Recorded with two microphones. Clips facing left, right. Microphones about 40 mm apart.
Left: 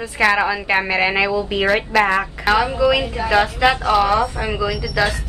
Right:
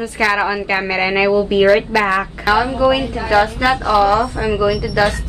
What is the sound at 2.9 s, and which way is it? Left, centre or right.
Speech, left.